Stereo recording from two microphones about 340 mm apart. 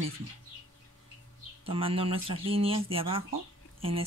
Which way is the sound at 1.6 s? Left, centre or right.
Centre.